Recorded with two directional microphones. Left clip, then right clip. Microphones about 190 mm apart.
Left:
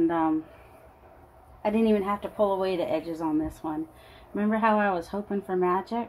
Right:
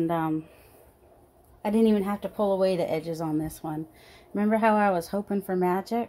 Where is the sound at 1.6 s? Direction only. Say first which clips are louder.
Even; 45° right (ahead or behind).